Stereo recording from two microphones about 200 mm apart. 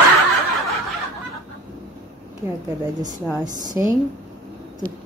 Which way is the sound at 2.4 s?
10° right (ahead or behind).